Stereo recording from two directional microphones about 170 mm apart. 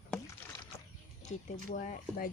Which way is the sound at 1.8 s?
55° left (ahead or behind).